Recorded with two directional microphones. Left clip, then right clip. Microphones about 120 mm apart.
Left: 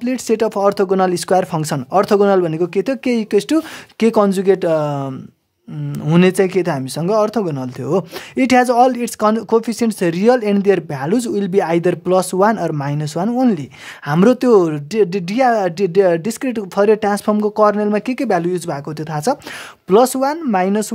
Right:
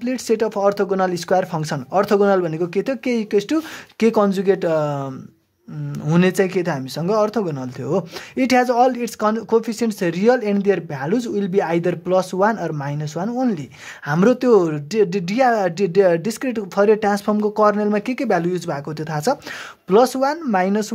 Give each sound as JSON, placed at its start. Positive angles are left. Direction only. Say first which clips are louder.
{"t": 0.0, "sound": "speech", "louder": "left 3 dB", "side_deg": 40}